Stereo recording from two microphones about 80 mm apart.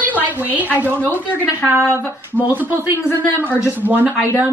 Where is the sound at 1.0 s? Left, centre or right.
Left.